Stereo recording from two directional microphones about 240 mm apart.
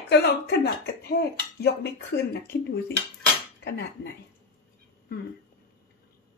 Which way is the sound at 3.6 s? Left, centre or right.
Left.